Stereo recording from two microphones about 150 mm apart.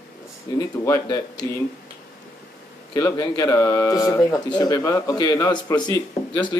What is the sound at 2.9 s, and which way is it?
Speech, 20° left (ahead or behind).